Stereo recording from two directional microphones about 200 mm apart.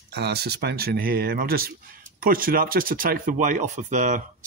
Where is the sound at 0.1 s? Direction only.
55° right (ahead or behind).